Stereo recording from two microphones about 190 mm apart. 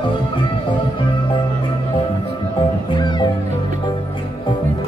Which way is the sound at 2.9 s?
25° left (ahead or behind).